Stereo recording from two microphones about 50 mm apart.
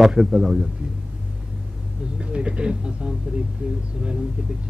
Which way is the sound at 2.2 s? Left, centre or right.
Centre.